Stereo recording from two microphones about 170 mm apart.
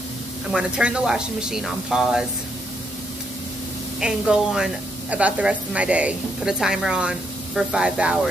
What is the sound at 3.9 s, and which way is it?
A woman's voice, 5° right (ahead or behind).